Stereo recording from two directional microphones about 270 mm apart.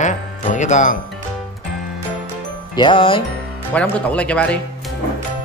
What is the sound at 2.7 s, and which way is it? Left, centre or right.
Music, centre.